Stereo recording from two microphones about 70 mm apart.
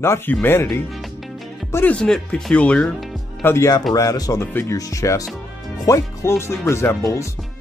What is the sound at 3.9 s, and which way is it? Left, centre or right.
Speech, left.